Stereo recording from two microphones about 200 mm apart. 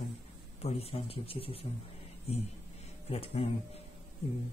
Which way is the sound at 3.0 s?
30° left (ahead or behind).